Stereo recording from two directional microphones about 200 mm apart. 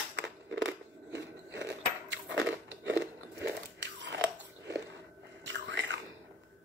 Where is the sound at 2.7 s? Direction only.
65° right (ahead or behind).